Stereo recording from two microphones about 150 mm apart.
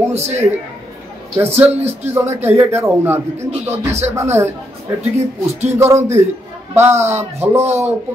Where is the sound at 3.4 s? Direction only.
45° right (ahead or behind).